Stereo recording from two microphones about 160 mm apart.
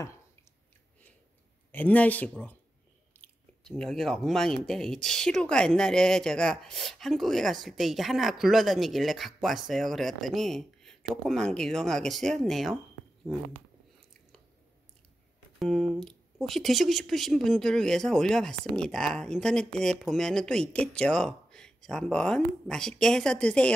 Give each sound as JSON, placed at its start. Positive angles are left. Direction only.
{"t": 1.7, "sound": "speech", "side_deg": 10}
{"t": 15.6, "sound": "speech", "side_deg": 0}